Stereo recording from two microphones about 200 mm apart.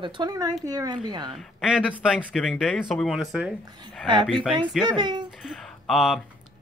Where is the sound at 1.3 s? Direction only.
5° right (ahead or behind).